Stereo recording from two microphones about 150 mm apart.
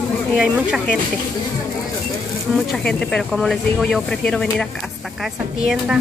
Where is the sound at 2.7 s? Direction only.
5° left (ahead or behind).